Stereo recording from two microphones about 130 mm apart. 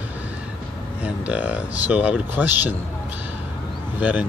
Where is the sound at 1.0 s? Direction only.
10° right (ahead or behind).